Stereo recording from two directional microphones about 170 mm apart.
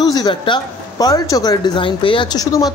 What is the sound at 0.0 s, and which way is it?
Speech, 20° left (ahead or behind).